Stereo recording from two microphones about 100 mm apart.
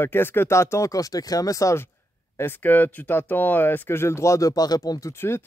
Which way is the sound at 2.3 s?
20° left (ahead or behind).